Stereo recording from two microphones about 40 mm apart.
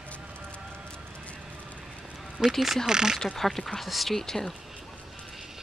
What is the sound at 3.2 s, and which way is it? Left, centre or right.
Speech, centre.